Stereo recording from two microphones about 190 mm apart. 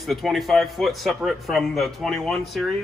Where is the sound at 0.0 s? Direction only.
Centre (ahead or behind).